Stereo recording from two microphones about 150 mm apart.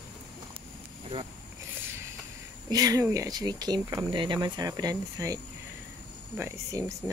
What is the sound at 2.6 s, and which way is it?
Speech, 25° right (ahead or behind).